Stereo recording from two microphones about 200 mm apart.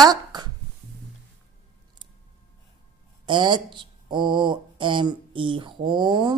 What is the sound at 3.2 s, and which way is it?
Speech, 25° right (ahead or behind).